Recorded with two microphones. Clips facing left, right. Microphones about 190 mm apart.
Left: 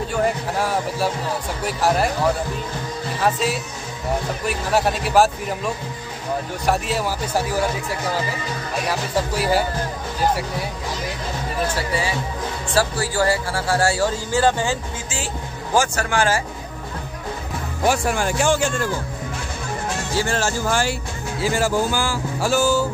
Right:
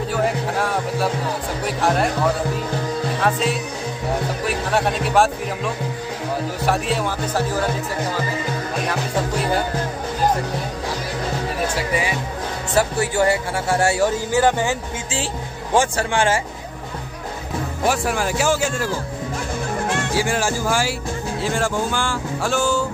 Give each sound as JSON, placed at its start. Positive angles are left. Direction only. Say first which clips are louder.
{"t": 0.1, "sound": "speech", "louder": "right 1 dB", "side_deg": 0}
{"t": 3.2, "sound": "speech", "louder": "left 2 dB", "side_deg": 0}
{"t": 6.6, "sound": "speech", "louder": "right 1 dB", "side_deg": 0}
{"t": 7.3, "sound": "speech", "louder": "even", "side_deg": 10}
{"t": 9.4, "sound": "speech", "louder": "left 3 dB", "side_deg": 5}
{"t": 11.7, "sound": "speech", "louder": "right 1 dB", "side_deg": -15}
{"t": 15.8, "sound": "speech", "louder": "right 1 dB", "side_deg": -30}
{"t": 17.8, "sound": "speech", "louder": "left 1 dB", "side_deg": 0}
{"t": 20.2, "sound": "speech", "louder": "left 1 dB", "side_deg": -10}
{"t": 21.4, "sound": "speech", "louder": "left 3 dB", "side_deg": 5}